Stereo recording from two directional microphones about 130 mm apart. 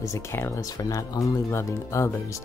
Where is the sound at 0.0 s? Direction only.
25° left (ahead or behind).